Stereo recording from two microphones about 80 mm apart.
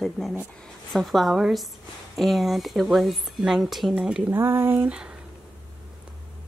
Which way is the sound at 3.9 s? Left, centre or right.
Centre.